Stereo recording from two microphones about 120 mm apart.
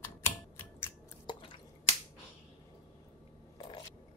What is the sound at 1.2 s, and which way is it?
Squish, 45° left (ahead or behind).